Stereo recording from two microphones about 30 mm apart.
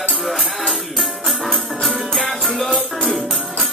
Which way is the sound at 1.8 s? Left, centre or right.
Centre.